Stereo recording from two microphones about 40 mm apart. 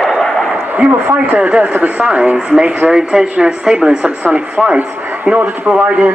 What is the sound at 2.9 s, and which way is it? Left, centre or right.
Speech, centre.